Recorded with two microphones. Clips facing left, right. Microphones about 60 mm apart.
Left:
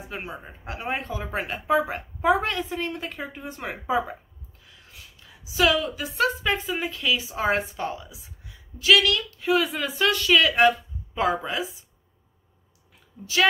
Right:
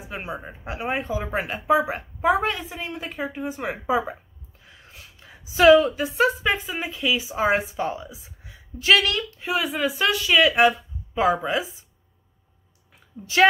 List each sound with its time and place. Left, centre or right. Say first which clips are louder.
0.4 s a woman's voice: right 4 dB; centre
4.6 s a sound: right 3 dB; right
6.1 s speech: right 2 dB; centre
7.9 s speech: right 3 dB; right
9.6 s speech: right 1 dB; centre
13.2 s a woman's voice: right 2 dB; right